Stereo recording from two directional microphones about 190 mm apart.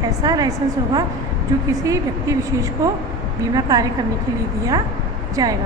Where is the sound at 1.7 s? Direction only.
15° right (ahead or behind).